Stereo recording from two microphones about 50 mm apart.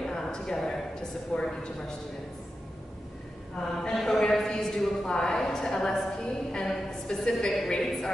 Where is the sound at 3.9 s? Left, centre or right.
Centre.